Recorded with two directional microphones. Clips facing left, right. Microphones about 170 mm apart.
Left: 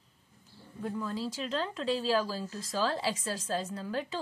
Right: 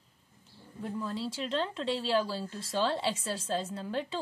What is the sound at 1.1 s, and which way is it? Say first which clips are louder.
A woman's voice: right 1 dB; 30° right (ahead or behind).